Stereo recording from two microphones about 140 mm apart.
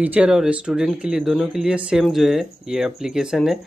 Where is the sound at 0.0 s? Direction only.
10° right (ahead or behind).